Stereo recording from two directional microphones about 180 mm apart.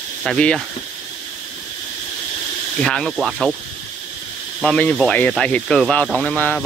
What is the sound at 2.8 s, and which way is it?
Speech, 5° left (ahead or behind).